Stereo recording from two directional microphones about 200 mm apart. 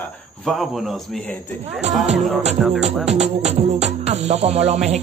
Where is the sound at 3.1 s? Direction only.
35° right (ahead or behind).